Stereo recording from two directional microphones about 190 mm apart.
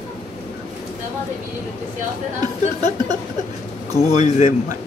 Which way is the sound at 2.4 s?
20° right (ahead or behind).